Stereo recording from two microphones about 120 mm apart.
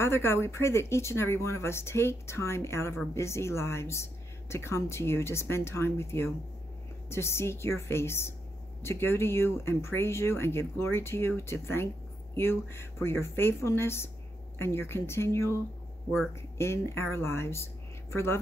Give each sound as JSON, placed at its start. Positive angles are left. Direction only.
{"t": 0.0, "sound": "speech", "side_deg": 20}